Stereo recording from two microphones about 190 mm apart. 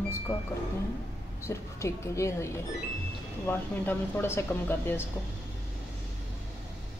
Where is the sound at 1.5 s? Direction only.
15° left (ahead or behind).